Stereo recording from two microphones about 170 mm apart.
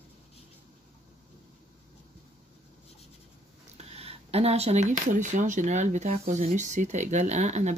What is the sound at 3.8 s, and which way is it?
Speech, 35° right (ahead or behind).